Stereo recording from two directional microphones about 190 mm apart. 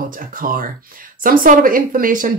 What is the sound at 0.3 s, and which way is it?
Speech, 45° right (ahead or behind).